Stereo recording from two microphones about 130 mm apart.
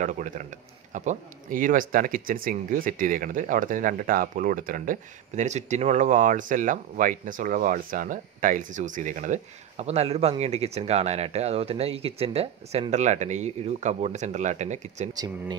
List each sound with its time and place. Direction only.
0.0 s speech: 75° right (ahead or behind); by 12.8 s 50° right (ahead or behind)
12.9 s speech: 65° right (ahead or behind)